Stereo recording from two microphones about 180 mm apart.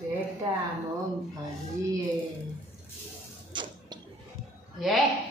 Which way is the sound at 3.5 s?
25° right (ahead or behind).